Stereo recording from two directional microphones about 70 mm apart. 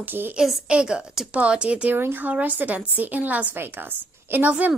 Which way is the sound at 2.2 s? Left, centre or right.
Right.